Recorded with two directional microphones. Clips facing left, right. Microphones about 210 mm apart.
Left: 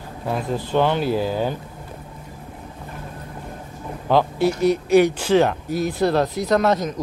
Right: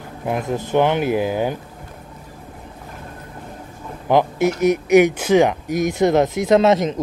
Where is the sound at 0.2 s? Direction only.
15° right (ahead or behind).